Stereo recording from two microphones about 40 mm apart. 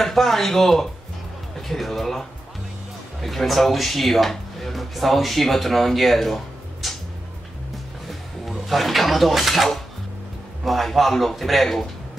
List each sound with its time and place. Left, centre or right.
0.0 s speech: centre
8.1 s speech: centre